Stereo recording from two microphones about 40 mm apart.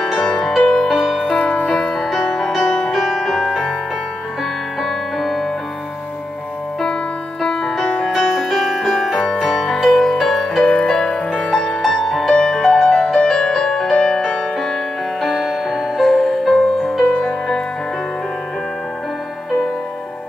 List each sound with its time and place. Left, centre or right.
0.2 s music: centre
0.6 s music: left
0.9 s music: centre
1.2 s music: left
2.0 s music: centre
2.5 s music: centre
4.8 s music: centre
7.4 s music: centre
8.0 s music: centre
8.7 s music: centre
11.8 s music: centre
15.3 s music: centre